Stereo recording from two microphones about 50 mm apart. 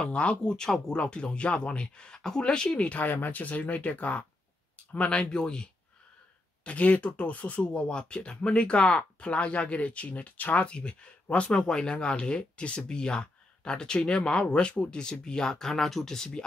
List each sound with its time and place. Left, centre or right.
0.0 s speech: left
2.9 s speech: left; by 16.4 s centre